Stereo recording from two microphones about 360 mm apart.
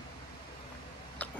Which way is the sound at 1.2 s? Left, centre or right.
Centre.